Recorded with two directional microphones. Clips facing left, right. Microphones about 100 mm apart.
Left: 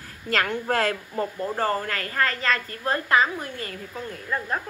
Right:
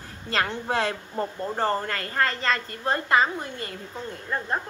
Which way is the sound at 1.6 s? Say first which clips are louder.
Right 1 dB; 25° right (ahead or behind).